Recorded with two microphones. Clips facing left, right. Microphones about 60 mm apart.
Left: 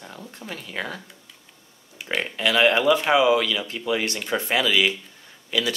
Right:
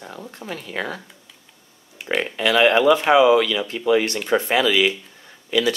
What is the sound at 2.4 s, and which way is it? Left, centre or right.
Speech, right.